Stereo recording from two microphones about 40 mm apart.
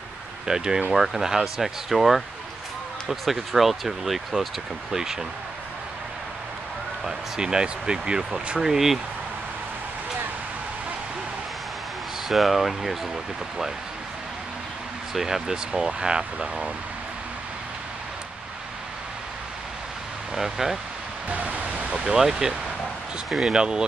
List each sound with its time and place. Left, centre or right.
0.5 s speech: centre
0.9 s speech: centre
7.1 s speech: centre
12.3 s speech: centre
15.1 s speech: centre
20.3 s speech: centre
21.3 s a sound: right
22.4 s speech: centre